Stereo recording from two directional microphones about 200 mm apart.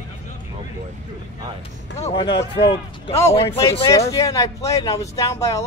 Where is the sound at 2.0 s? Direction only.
25° left (ahead or behind).